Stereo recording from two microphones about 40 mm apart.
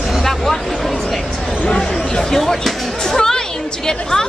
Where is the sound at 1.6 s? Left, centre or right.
Centre.